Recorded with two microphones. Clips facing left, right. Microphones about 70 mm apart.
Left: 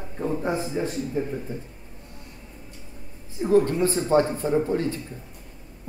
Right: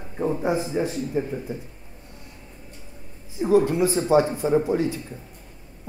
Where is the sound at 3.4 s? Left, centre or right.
Centre.